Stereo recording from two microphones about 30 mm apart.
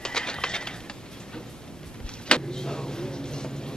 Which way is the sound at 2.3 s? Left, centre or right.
Left.